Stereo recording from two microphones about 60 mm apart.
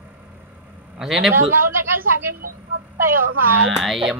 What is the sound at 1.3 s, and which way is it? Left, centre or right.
A woman's voice, right.